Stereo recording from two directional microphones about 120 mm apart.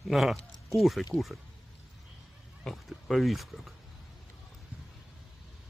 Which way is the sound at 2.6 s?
Centre (ahead or behind).